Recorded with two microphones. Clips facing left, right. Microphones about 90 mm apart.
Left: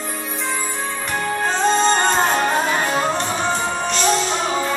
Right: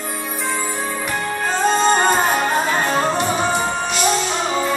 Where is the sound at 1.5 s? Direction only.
5° right (ahead or behind).